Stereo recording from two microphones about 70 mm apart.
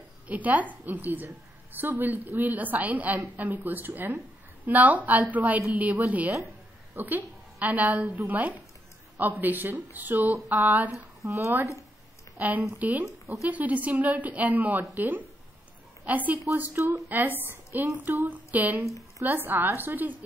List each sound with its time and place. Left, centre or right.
0.3 s a woman's voice: right
11.2 s speech: right
12.4 s a woman's voice: right